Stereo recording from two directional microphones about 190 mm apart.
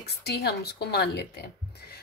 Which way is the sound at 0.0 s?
60° left (ahead or behind).